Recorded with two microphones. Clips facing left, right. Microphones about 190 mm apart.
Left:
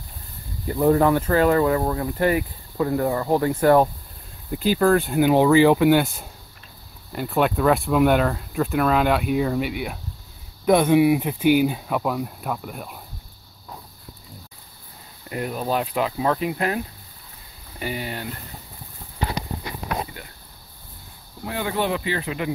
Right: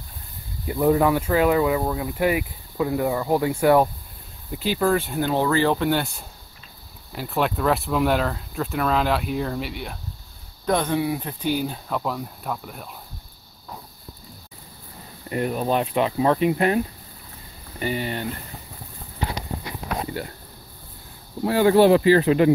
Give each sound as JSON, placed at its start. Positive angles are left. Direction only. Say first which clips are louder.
{"t": 0.7, "sound": "speech", "louder": "left 1 dB", "side_deg": -5}
{"t": 5.2, "sound": "speech", "louder": "left 7 dB", "side_deg": 15}
{"t": 15.2, "sound": "speech", "louder": "right 3 dB", "side_deg": 0}
{"t": 21.5, "sound": "speech", "louder": "right 10 dB", "side_deg": -40}